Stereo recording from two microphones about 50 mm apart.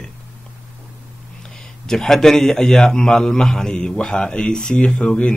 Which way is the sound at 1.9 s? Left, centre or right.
Centre.